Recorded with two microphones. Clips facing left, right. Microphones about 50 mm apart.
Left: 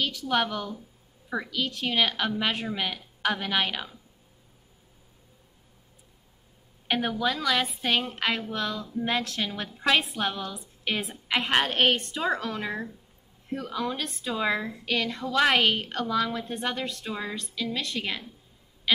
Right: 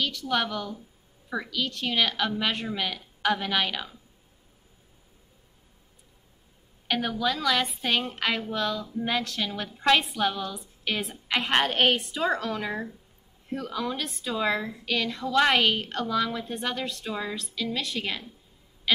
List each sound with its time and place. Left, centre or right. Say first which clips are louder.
0.0 s a woman's voice: left 1 dB; centre
6.9 s a woman's voice: left 1 dB; centre
7.2 s a woman's voice: right 1 dB; centre
9.8 s a woman's voice: right 2 dB; centre
18.9 s music: even; centre